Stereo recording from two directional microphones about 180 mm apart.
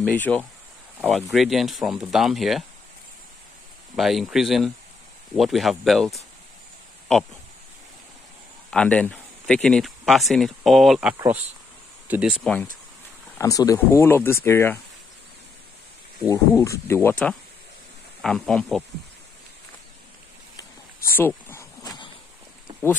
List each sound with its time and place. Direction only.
0.0 s speech: 10° left (ahead or behind)
3.9 s speech: centre (ahead or behind)
8.6 s speech: 5° left (ahead or behind)
13.4 s speech: 20° left (ahead or behind)
16.3 s speech: 15° left (ahead or behind)
20.5 s a sound: 15° left (ahead or behind)